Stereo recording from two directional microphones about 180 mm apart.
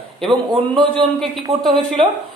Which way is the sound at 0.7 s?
25° right (ahead or behind).